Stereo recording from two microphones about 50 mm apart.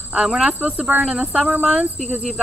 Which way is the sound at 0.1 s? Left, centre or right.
Centre.